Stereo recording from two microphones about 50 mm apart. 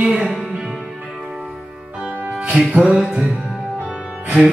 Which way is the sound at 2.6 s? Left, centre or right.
Centre.